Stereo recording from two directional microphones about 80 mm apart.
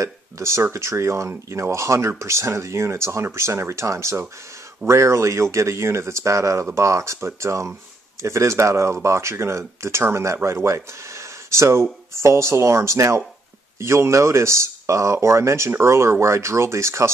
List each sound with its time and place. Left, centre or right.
0.0 s speech: right